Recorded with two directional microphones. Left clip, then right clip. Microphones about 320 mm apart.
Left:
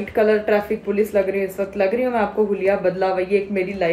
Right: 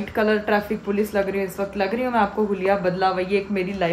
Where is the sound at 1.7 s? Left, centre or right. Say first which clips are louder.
Left 2 dB; centre.